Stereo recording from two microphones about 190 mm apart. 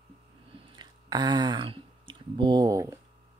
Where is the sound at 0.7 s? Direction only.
20° right (ahead or behind).